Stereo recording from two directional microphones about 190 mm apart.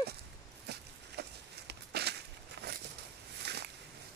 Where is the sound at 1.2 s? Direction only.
60° right (ahead or behind).